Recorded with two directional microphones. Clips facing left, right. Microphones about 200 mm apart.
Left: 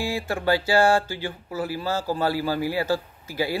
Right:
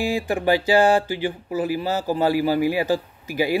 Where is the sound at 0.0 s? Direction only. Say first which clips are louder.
Right 4 dB; 15° right (ahead or behind).